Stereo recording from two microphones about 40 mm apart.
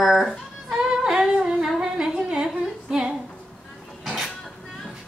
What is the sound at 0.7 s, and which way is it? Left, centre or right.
Yodeling, centre.